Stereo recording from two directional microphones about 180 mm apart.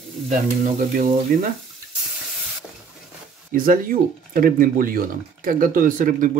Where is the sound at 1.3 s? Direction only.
50° right (ahead or behind).